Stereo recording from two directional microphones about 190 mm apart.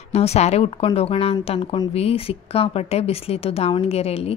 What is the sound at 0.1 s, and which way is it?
A woman's voice, 35° left (ahead or behind).